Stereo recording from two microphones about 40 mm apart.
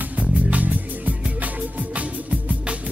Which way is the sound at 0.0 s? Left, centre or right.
Right.